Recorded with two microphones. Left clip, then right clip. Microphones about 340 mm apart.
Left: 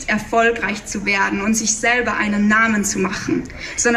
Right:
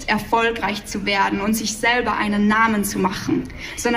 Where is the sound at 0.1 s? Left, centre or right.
Centre.